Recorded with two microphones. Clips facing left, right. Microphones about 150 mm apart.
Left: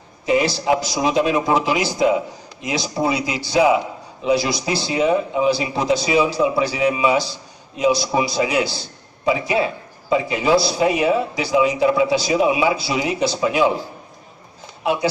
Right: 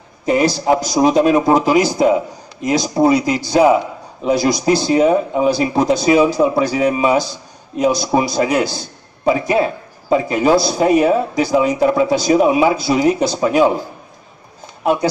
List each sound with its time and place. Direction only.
0.2 s a man's voice: 45° right (ahead or behind)